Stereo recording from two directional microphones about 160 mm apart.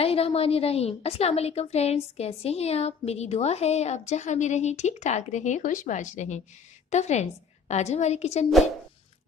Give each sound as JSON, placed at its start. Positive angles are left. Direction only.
{"t": 0.0, "sound": "a woman's voice", "side_deg": 35}